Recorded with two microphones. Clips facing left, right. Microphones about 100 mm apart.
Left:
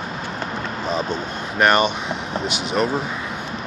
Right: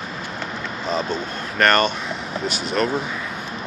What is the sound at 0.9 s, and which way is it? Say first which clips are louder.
Speech: right 1 dB; 15° left (ahead or behind).